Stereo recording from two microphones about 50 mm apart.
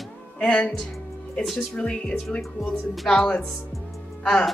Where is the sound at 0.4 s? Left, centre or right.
Centre.